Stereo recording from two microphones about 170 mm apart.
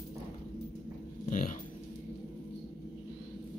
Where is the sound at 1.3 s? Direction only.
50° left (ahead or behind).